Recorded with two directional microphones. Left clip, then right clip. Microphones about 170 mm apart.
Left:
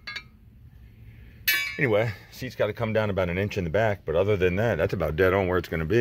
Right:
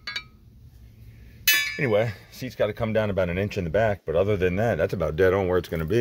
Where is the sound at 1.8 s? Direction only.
Centre (ahead or behind).